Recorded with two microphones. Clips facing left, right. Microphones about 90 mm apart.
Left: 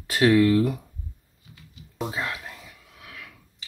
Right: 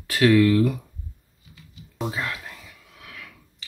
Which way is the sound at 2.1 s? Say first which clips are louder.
Right 1 dB; 15° left (ahead or behind).